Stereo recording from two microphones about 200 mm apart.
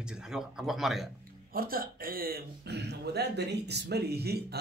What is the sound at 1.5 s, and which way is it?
A man's voice, 45° right (ahead or behind).